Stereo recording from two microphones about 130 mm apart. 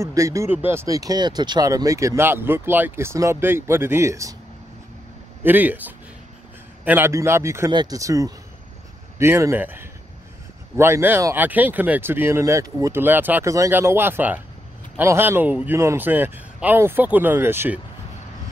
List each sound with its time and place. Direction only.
0.0 s speech: 25° right (ahead or behind)
5.4 s speech: 15° right (ahead or behind)